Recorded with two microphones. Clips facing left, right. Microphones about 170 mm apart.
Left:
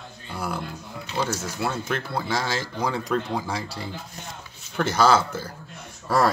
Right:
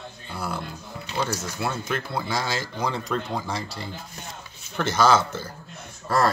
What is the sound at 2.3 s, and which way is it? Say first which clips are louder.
Speech: left 2 dB; 5° left (ahead or behind).